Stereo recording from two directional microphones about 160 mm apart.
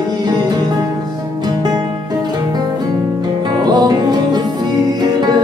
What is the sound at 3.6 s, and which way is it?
Music, 25° right (ahead or behind).